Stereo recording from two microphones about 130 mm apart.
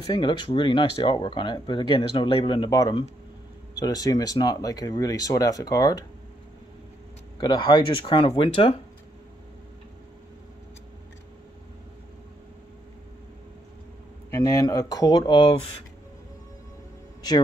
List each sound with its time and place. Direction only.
0.0 s speech: 35° left (ahead or behind)
7.3 s speech: 35° left (ahead or behind)
14.3 s speech: 25° left (ahead or behind)